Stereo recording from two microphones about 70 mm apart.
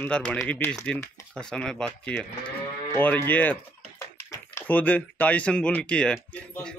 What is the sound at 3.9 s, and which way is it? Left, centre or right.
Tap, left.